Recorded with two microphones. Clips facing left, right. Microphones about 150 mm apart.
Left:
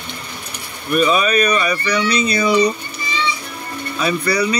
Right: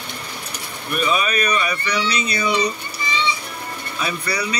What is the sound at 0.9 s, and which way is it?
Speech, 40° left (ahead or behind).